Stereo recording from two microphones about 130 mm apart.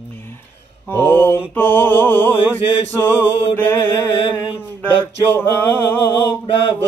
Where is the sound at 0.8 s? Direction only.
15° left (ahead or behind).